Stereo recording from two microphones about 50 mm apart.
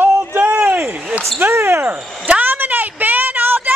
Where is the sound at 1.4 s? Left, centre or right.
Right.